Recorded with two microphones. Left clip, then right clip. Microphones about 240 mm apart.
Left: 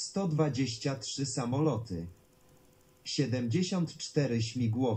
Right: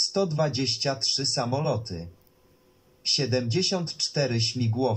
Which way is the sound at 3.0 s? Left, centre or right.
Right.